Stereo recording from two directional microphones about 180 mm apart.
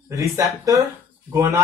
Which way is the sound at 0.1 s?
20° right (ahead or behind).